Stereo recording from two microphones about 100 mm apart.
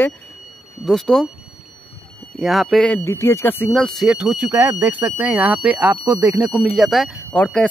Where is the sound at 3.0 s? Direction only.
25° left (ahead or behind).